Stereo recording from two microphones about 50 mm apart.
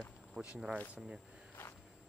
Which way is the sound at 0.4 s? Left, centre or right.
Centre.